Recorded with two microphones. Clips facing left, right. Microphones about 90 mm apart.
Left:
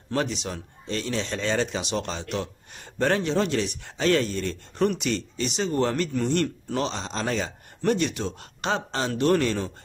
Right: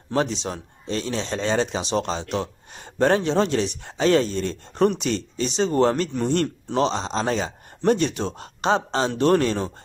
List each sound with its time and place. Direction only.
0.1 s speech: 30° right (ahead or behind)